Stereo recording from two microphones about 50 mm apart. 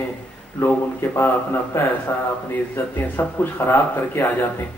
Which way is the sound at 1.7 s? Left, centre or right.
Left.